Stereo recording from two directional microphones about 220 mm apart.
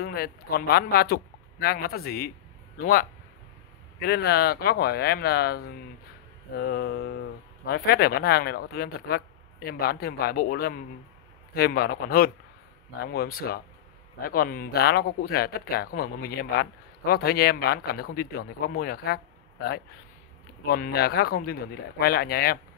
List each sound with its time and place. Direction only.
0.0 s a man's voice: 45° left (ahead or behind)